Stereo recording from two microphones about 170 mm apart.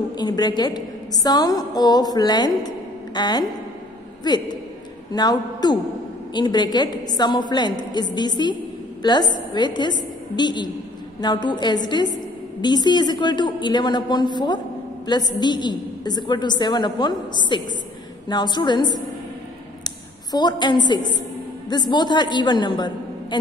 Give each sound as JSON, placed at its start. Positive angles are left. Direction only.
{"t": 0.2, "sound": "a woman's voice", "side_deg": 25}
{"t": 5.1, "sound": "a woman's voice", "side_deg": 25}
{"t": 19.8, "sound": "a sound", "side_deg": 25}
{"t": 21.6, "sound": "a woman's voice", "side_deg": 25}